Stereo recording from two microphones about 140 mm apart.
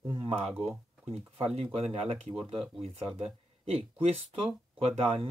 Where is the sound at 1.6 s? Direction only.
45° right (ahead or behind).